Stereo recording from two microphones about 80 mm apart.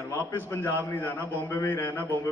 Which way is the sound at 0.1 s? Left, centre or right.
Left.